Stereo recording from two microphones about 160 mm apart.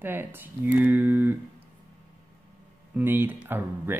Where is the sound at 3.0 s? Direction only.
10° right (ahead or behind).